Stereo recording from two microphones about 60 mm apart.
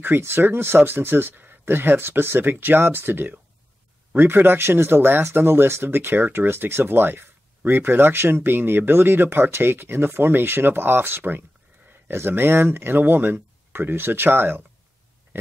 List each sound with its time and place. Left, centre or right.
0.0 s speech: right